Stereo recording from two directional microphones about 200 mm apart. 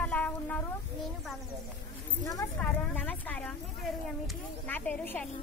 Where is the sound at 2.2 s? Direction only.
15° left (ahead or behind).